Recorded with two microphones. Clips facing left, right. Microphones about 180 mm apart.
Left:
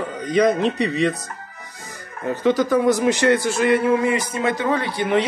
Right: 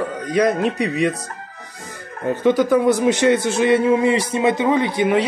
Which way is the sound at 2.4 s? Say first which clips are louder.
Right 2 dB; 15° right (ahead or behind).